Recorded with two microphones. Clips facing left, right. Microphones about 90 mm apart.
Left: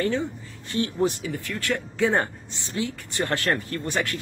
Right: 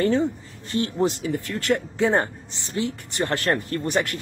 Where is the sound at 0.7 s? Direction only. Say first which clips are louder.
Right 1 dB; 25° right (ahead or behind).